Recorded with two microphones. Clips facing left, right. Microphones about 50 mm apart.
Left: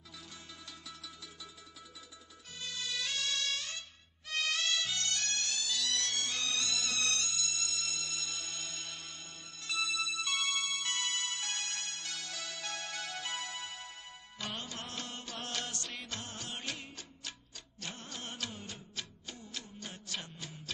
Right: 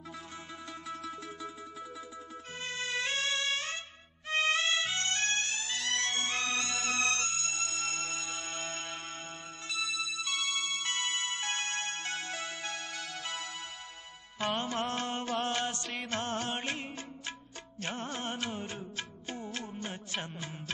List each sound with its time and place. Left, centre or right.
0.8 s music: right
2.6 s music: right
14.4 s music: right
16.1 s music: right